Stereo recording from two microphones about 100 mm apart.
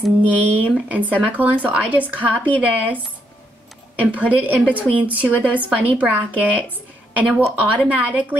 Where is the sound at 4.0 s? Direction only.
15° right (ahead or behind).